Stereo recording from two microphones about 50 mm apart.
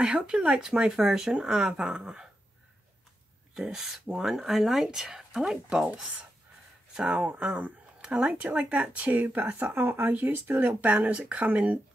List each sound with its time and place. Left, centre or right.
0.0 s speech: centre
3.7 s speech: centre
7.1 s speech: right
9.8 s speech: right
10.8 s speech: right